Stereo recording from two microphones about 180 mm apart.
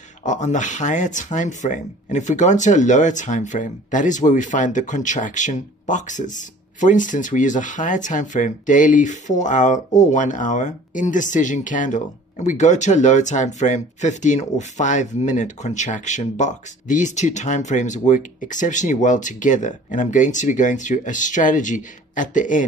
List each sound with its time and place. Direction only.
0.2 s speech: 40° left (ahead or behind)